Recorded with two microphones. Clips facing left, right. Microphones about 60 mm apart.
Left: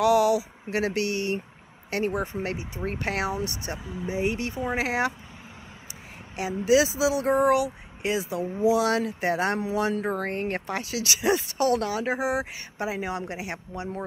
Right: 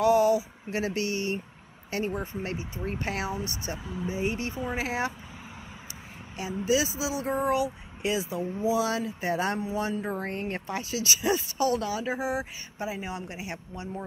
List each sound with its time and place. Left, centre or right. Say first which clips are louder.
0.0 s speech: left 1 dB; left
2.8 s speech: left 4 dB; left
3.7 s speech: even; centre
4.1 s speech: left 4 dB; left
6.3 s speech: left 5 dB; left
8.0 s speech: left 1 dB; left
8.6 s speech: left 5 dB; left
9.6 s speech: left 4 dB; left